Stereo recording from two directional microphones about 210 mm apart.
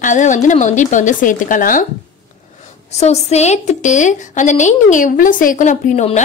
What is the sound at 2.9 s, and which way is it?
A woman's voice, 30° left (ahead or behind).